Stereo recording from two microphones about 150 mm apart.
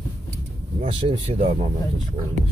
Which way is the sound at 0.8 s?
40° right (ahead or behind).